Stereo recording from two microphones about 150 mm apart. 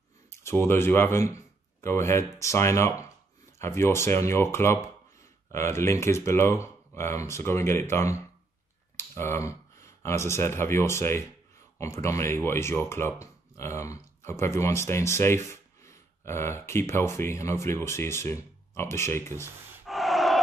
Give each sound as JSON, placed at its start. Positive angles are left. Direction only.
{"t": 0.3, "sound": "speech", "side_deg": 15}
{"t": 19.9, "sound": "gasp", "side_deg": 0}